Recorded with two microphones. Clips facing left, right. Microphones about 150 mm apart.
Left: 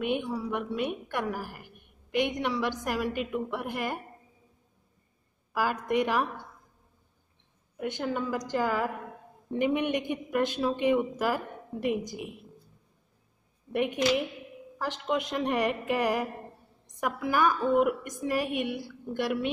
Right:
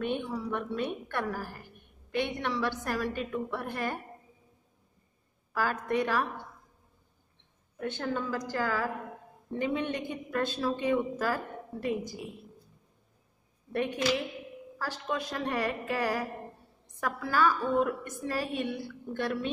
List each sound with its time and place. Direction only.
0.0 s a woman's voice: 10° left (ahead or behind)
5.5 s a woman's voice: 15° left (ahead or behind)
7.7 s a woman's voice: 15° left (ahead or behind)
13.7 s a woman's voice: 15° left (ahead or behind)